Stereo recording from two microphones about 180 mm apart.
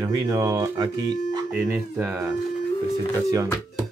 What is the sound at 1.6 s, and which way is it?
Speech, 10° right (ahead or behind).